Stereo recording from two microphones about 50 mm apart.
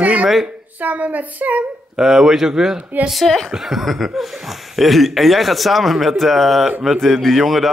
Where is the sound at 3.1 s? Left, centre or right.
Centre.